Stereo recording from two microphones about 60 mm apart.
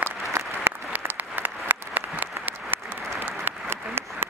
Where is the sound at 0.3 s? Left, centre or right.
Right.